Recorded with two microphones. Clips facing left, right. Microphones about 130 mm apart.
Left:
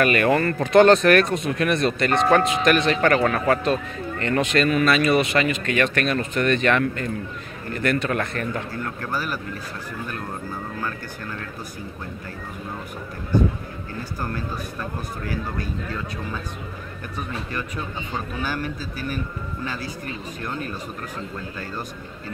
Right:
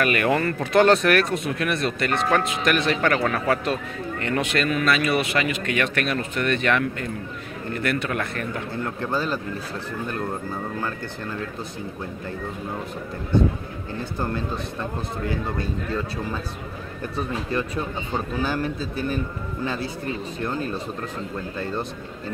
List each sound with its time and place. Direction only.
0.0 s speech: 5° right (ahead or behind)
8.7 s speech: 25° right (ahead or behind)
14.2 s speech: 25° right (ahead or behind)